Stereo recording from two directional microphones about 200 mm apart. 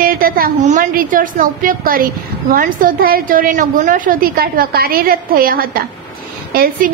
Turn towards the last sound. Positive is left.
turn(degrees=-50)  # may be behind; listen again after turning